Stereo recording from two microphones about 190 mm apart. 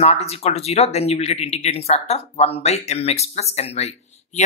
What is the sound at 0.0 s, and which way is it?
Speech, 35° left (ahead or behind).